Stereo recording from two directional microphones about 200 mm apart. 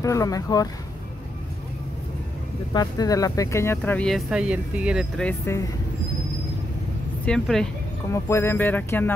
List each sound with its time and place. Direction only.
0.0 s speech: 15° left (ahead or behind)
2.7 s speech: 20° left (ahead or behind); by 5.3 s centre (ahead or behind)
5.4 s speech: 15° left (ahead or behind)
7.2 s speech: centre (ahead or behind)
8.1 s speech: 15° left (ahead or behind)